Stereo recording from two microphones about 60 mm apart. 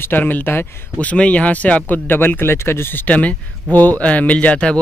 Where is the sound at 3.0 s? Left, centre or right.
Left.